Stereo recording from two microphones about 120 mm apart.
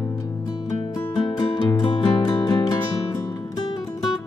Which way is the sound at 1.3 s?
40° left (ahead or behind).